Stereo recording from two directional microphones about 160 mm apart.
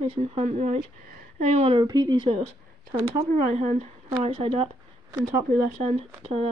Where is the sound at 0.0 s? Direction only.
35° right (ahead or behind).